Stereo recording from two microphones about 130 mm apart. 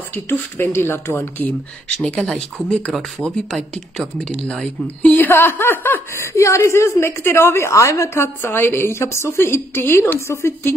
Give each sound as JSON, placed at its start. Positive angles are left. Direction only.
{"t": 0.1, "sound": "speech", "side_deg": 20}
{"t": 2.0, "sound": "speech", "side_deg": 0}